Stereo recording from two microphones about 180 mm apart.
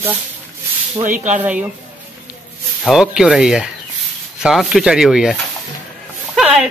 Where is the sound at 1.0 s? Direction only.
40° right (ahead or behind).